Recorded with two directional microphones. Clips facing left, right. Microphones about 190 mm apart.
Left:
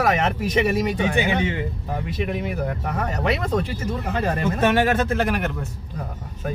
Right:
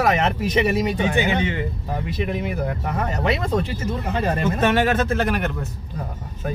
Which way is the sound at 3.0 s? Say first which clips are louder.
Right 1 dB; 25° right (ahead or behind).